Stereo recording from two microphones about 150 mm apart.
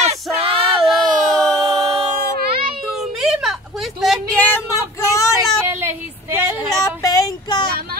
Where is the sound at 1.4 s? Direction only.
25° right (ahead or behind).